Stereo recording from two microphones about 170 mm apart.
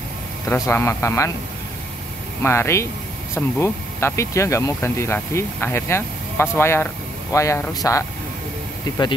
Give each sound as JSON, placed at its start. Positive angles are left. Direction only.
{"t": 0.5, "sound": "speech", "side_deg": 15}
{"t": 2.4, "sound": "speech", "side_deg": 15}